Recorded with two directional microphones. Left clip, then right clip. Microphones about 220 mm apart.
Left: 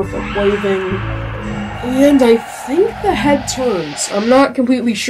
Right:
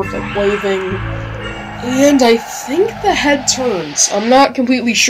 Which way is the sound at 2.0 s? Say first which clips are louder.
Even; centre (ahead or behind).